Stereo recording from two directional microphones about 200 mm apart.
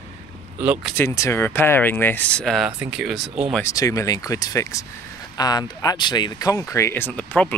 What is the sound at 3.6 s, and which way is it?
Speech, 15° left (ahead or behind).